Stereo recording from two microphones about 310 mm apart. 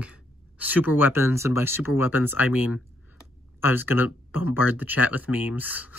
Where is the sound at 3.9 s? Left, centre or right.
Left.